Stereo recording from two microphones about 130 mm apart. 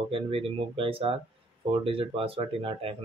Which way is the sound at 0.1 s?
45° right (ahead or behind).